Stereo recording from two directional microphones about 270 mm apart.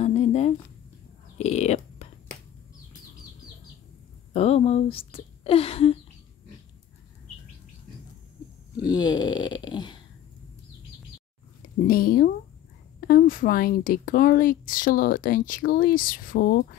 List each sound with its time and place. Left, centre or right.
0.0 s a sound: left
4.3 s speech: left
8.8 s speech: centre
11.9 s speech: left